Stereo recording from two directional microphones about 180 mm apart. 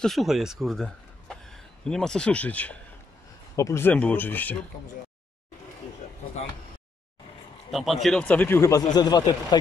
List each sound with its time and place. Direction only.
0.0 s a man's voice: centre (ahead or behind)
7.7 s a man's voice: centre (ahead or behind); by 9.6 s 20° left (ahead or behind)